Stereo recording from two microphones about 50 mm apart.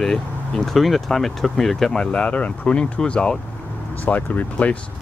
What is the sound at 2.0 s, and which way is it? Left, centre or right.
Speech, left.